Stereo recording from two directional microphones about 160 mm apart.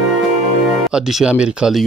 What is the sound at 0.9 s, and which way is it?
Speech, 5° right (ahead or behind).